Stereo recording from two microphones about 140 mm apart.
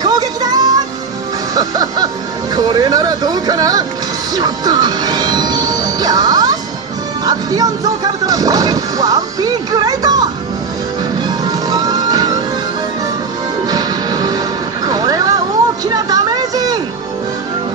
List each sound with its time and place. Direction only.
0.0 s music: 30° right (ahead or behind)
2.5 s speech: 30° right (ahead or behind)
4.4 s music: 30° right (ahead or behind)
7.2 s speech: 25° right (ahead or behind)
11.2 s music: 30° right (ahead or behind)
13.7 s music: 25° right (ahead or behind)
14.9 s a sound: 25° right (ahead or behind)